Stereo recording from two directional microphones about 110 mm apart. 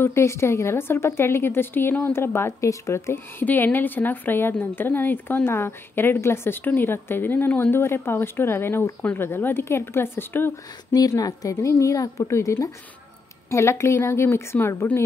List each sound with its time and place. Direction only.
0.0 s a woman's voice: 25° left (ahead or behind)
10.9 s a woman's voice: 35° left (ahead or behind)